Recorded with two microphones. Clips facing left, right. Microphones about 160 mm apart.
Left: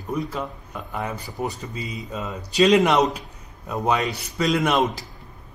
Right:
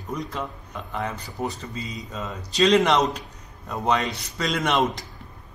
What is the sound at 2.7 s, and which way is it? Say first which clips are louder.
Speech: even; centre (ahead or behind).